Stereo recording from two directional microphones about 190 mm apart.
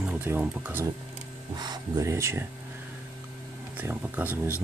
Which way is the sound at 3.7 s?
10° right (ahead or behind).